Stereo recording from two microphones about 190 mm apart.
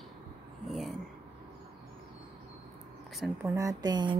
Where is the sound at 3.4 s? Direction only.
15° right (ahead or behind).